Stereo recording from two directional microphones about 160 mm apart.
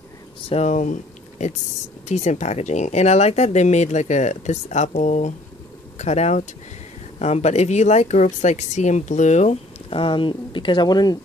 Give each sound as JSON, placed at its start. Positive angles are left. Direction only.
{"t": 0.4, "sound": "speech", "side_deg": 40}